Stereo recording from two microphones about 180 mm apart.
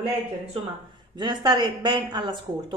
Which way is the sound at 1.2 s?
25° right (ahead or behind).